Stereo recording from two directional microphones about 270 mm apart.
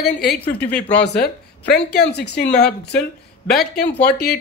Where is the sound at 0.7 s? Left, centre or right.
Centre.